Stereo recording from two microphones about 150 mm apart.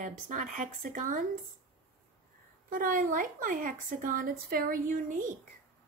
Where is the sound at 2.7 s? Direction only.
70° right (ahead or behind).